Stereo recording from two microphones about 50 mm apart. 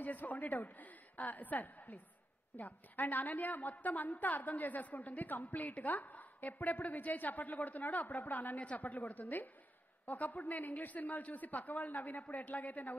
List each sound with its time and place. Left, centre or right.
0.0 s a woman's voice: left